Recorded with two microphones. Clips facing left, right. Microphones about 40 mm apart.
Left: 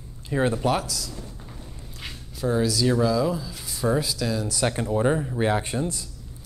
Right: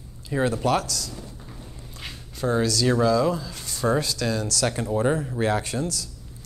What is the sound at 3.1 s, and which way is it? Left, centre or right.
Speech, centre.